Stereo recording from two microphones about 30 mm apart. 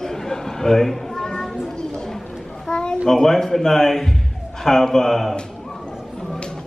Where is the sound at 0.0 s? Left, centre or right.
Centre.